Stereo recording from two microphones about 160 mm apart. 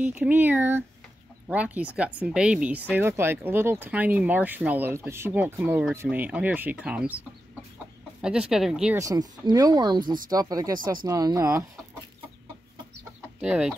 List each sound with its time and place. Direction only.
0.0 s speech: 10° right (ahead or behind)
8.2 s speech: 5° right (ahead or behind)
8.9 s speech: 20° right (ahead or behind)
13.4 s speech: 5° right (ahead or behind)